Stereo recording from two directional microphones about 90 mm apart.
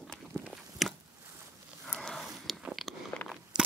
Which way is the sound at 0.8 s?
Centre (ahead or behind).